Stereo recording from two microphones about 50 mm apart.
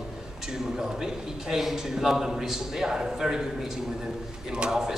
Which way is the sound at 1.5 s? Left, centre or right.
Centre.